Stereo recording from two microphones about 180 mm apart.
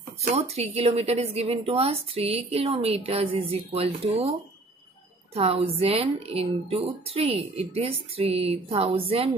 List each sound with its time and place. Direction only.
0.3 s a woman's voice: 35° right (ahead or behind)